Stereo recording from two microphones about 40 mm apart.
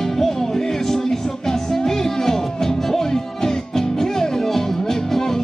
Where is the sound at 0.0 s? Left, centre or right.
Centre.